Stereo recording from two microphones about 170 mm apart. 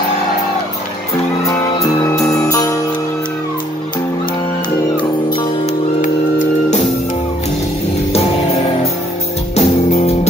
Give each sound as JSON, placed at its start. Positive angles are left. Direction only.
{"t": 1.5, "sound": "music", "side_deg": 20}
{"t": 9.6, "sound": "music", "side_deg": 40}